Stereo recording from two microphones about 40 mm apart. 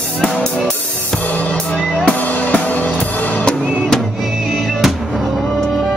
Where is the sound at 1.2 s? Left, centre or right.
Left.